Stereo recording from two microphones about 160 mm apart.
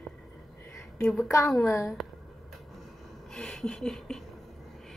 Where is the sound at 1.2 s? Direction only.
15° left (ahead or behind).